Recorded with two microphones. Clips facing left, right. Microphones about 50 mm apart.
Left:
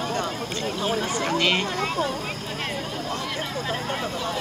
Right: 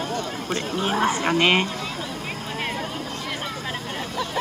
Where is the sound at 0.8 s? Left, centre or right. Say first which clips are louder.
Right 4 dB; right.